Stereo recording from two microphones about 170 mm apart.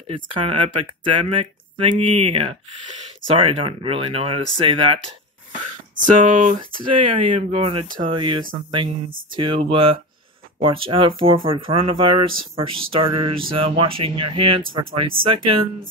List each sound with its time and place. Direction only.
0.0 s speech: 35° right (ahead or behind)
6.0 s speech: 45° right (ahead or behind)
6.5 s speech: 30° right (ahead or behind)